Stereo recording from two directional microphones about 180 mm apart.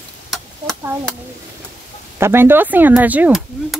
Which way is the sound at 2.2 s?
15° right (ahead or behind).